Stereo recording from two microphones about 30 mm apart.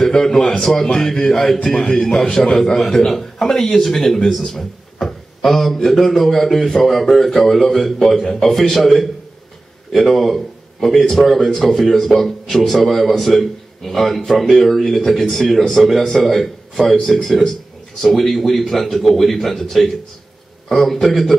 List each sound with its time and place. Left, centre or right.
0.0 s a man's voice: centre
4.6 s a sound: centre
5.9 s a man's voice: centre
9.9 s a man's voice: centre